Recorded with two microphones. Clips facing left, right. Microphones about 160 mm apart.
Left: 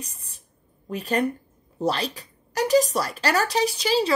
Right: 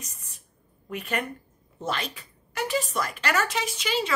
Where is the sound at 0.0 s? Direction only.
30° left (ahead or behind).